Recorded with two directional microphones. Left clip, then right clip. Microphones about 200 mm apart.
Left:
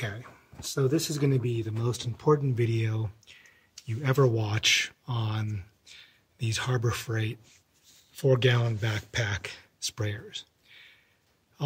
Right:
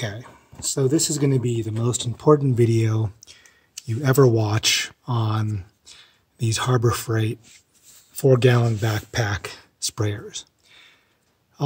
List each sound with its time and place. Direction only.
0.0 s speech: 25° right (ahead or behind); by 10.2 s 55° right (ahead or behind)